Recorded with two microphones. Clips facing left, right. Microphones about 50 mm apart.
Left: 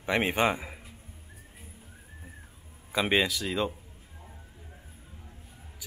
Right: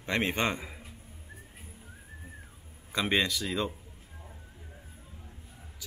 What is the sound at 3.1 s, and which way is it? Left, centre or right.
Speech, centre.